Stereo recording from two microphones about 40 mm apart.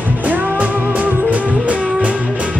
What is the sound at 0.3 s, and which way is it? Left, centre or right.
Music, right.